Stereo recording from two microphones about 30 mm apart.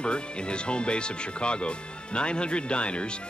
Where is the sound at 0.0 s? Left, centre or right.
Left.